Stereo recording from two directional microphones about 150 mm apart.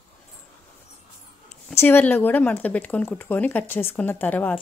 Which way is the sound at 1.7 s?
15° left (ahead or behind).